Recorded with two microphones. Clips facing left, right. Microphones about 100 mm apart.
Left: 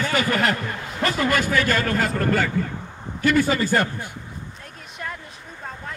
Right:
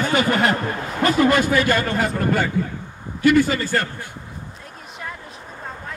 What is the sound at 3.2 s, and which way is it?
Speech, 5° right (ahead or behind).